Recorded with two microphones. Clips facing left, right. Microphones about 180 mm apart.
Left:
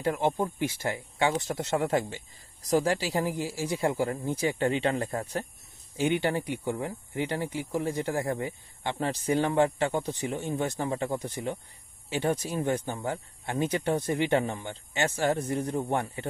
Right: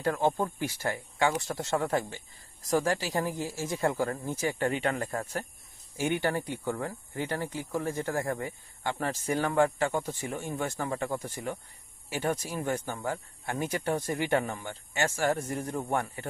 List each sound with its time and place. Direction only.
0.0 s speech: 20° left (ahead or behind)